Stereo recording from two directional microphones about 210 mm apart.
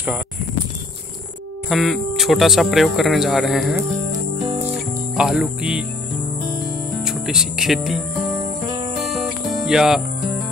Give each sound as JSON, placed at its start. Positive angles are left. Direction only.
{"t": 1.7, "sound": "speech", "side_deg": 0}
{"t": 4.1, "sound": "music", "side_deg": -25}
{"t": 4.6, "sound": "music", "side_deg": -5}
{"t": 6.9, "sound": "music", "side_deg": 0}